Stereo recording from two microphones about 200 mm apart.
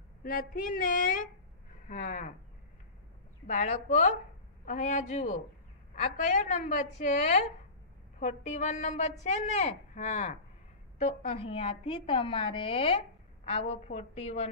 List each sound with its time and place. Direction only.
0.2 s a woman's voice: 45° left (ahead or behind)
3.4 s a woman's voice: 35° left (ahead or behind)